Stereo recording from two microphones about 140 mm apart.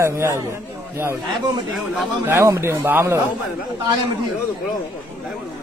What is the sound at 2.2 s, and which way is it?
A man's voice, 20° right (ahead or behind).